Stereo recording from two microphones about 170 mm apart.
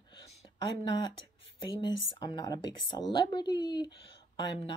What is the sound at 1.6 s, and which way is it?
A woman's voice, 25° left (ahead or behind).